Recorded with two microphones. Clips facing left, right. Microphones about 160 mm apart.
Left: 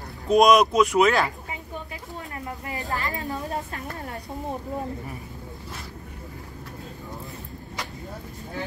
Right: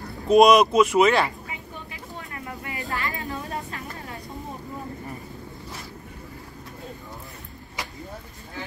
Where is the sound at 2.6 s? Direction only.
40° left (ahead or behind).